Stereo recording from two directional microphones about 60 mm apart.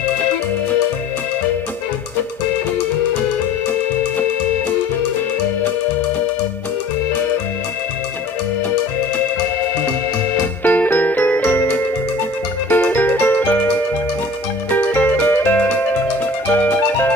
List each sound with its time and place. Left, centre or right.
10.6 s music: left
14.7 s music: left